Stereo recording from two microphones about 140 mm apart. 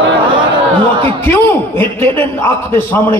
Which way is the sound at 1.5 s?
15° left (ahead or behind).